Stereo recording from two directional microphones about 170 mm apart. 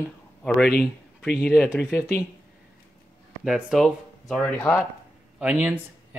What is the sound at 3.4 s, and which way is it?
Speech, centre (ahead or behind).